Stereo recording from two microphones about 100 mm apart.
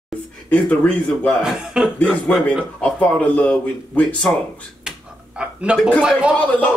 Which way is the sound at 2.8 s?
15° left (ahead or behind).